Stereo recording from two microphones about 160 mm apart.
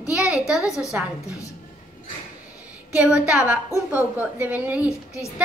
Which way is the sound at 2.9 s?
5° right (ahead or behind).